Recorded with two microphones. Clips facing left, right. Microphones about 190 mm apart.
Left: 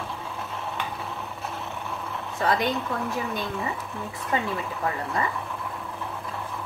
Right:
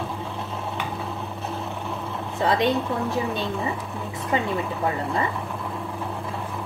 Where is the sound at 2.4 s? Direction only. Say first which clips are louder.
Right 3 dB; 30° right (ahead or behind).